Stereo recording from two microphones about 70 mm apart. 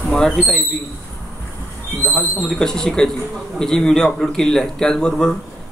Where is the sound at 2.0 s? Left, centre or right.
Left.